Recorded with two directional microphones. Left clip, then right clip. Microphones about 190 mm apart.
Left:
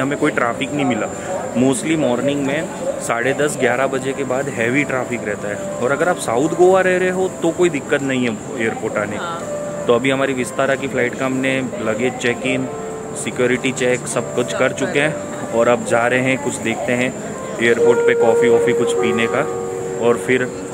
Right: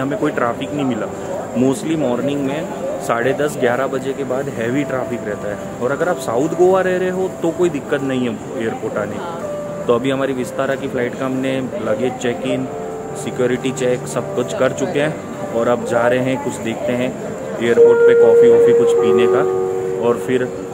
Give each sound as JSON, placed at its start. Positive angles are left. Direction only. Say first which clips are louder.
{"t": 0.0, "sound": "speech", "louder": "left 1 dB", "side_deg": 15}
{"t": 20.0, "sound": "speech", "louder": "left 3 dB", "side_deg": 10}